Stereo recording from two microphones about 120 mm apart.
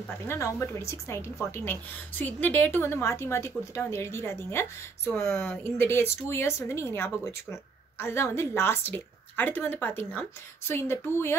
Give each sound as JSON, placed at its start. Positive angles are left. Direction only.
{"t": 0.2, "sound": "a woman's voice", "side_deg": 25}
{"t": 5.1, "sound": "speech", "side_deg": 5}
{"t": 5.8, "sound": "a woman's voice", "side_deg": 20}